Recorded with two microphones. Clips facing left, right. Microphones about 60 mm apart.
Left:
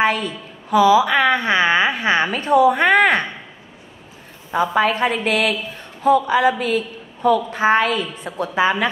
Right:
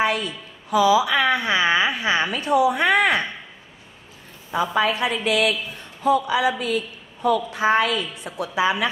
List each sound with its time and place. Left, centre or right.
0.0 s a woman's voice: left
4.5 s a woman's voice: left